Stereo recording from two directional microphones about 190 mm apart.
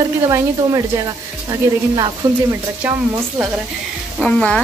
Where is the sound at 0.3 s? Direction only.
15° right (ahead or behind).